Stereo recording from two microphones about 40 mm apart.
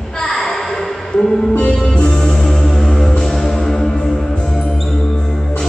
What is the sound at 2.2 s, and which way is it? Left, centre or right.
Music, centre.